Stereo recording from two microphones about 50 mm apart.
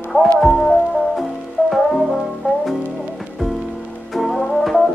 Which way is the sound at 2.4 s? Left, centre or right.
Right.